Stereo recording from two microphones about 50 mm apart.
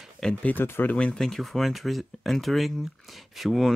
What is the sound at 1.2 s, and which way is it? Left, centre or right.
Speech, centre.